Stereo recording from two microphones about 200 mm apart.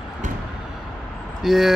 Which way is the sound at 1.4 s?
Centre (ahead or behind).